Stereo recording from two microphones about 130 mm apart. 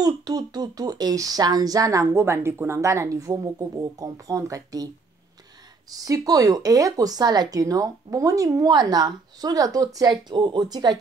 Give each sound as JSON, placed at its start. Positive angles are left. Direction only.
{"t": 0.0, "sound": "speech", "side_deg": -30}
{"t": 5.9, "sound": "speech", "side_deg": -30}